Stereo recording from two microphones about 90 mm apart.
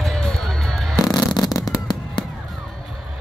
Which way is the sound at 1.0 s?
50° left (ahead or behind).